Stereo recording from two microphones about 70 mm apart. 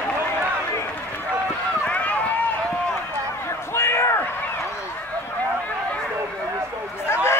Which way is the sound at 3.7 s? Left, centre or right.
Left.